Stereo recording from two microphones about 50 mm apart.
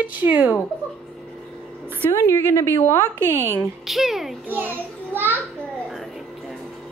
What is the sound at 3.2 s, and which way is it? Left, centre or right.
Speech, right.